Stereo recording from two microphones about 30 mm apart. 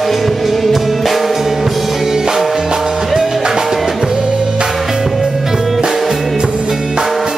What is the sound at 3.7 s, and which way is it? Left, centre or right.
Music, centre.